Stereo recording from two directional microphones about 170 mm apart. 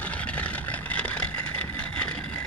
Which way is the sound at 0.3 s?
10° left (ahead or behind).